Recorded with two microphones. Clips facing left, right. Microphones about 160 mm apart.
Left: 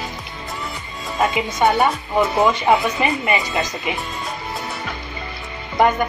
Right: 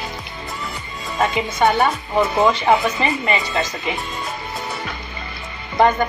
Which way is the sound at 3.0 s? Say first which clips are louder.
Left 1 dB; 20° left (ahead or behind).